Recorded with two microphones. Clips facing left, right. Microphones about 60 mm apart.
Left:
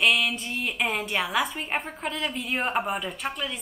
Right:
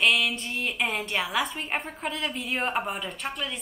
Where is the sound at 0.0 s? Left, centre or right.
Centre.